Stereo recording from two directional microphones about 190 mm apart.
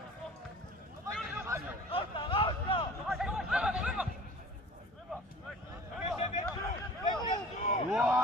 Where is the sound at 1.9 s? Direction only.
25° left (ahead or behind).